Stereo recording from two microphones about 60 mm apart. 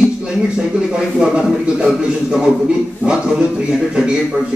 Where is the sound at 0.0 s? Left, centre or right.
Centre.